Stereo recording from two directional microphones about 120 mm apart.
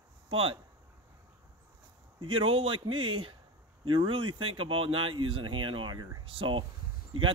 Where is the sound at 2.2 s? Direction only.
45° right (ahead or behind).